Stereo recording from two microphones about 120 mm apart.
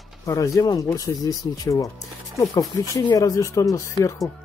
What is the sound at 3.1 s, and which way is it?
Speech, 30° left (ahead or behind).